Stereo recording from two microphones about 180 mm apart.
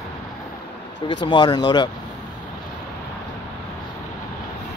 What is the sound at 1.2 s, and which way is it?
Speech, 25° left (ahead or behind).